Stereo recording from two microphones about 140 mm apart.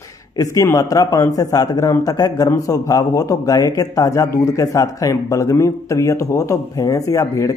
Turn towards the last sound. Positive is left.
turn(degrees=25)  # may be behind; listen again after turning